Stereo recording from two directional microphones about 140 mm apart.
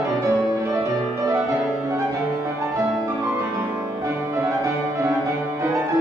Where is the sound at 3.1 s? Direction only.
20° right (ahead or behind).